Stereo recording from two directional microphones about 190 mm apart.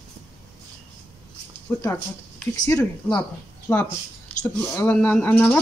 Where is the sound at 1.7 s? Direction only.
10° left (ahead or behind).